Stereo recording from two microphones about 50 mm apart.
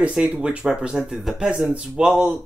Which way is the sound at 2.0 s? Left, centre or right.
Centre.